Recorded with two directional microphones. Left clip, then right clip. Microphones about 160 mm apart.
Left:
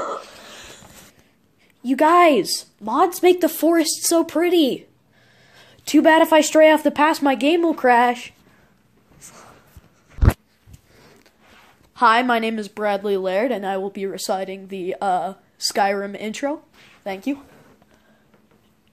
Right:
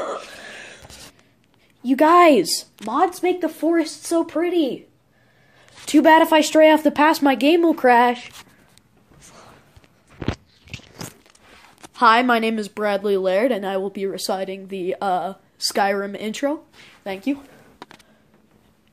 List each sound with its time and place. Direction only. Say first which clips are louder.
0.0 s a sound: even; 30° right (ahead or behind)
1.8 s a woman's voice: right 1 dB; centre (ahead or behind)
3.0 s speech: left 4 dB; 70° left (ahead or behind)
5.9 s a woman's voice: even; centre (ahead or behind)
9.2 s a sound: left 2 dB; 10° left (ahead or behind)
11.9 s a woman's voice: right 1 dB; 5° right (ahead or behind)
17.0 s a woman's voice: right 1 dB; 10° left (ahead or behind)